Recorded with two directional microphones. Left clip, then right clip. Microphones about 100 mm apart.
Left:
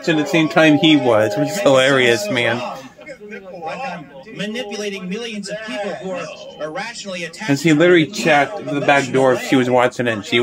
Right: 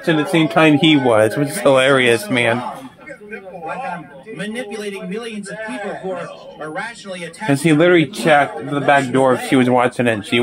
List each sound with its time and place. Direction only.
0.3 s speech: 35° right (ahead or behind)
0.7 s speech: 50° right (ahead or behind); by 2.5 s 30° right (ahead or behind)
3.6 s a man's voice: 25° left (ahead or behind)
7.4 s speech: 40° right (ahead or behind)
7.9 s speech: 20° right (ahead or behind)
9.5 s speech: 40° right (ahead or behind)